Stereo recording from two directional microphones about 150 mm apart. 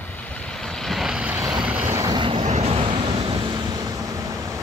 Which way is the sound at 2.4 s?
45° right (ahead or behind).